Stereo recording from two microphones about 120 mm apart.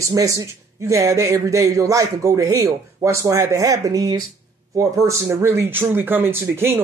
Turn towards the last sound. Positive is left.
turn(degrees=-20)  # may be behind; listen again after turning